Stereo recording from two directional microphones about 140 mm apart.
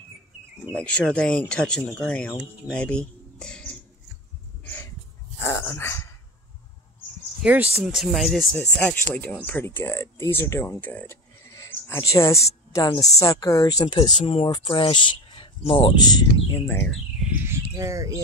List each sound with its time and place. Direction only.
0.7 s speech: 5° left (ahead or behind)
5.4 s dog: 20° left (ahead or behind)
7.4 s speech: 10° right (ahead or behind); by 11.1 s 10° left (ahead or behind)
11.5 s a sound: 20° left (ahead or behind)
13.0 s speech: 25° left (ahead or behind)
14.2 s speech: 40° left (ahead or behind)
16.5 s speech: 15° left (ahead or behind)
17.3 s bird: 20° right (ahead or behind)